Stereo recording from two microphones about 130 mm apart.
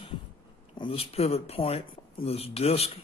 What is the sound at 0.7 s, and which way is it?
Speech, 45° left (ahead or behind).